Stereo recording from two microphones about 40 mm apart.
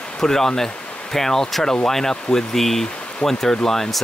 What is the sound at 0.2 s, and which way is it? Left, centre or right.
Speech, centre.